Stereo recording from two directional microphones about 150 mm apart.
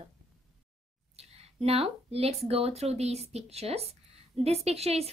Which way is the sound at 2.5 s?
40° right (ahead or behind).